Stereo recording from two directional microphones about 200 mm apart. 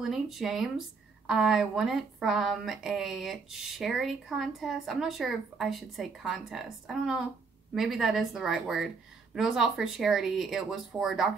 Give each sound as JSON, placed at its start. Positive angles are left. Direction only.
{"t": 0.0, "sound": "a woman's voice", "side_deg": 0}